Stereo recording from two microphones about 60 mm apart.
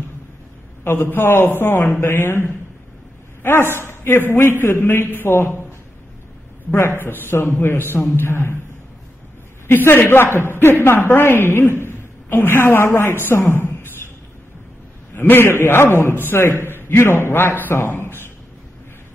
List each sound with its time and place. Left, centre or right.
0.8 s a man's voice: left
6.9 s a man's voice: left
7.2 s a man's voice: left
9.7 s a man's voice: left
15.1 s a man's voice: left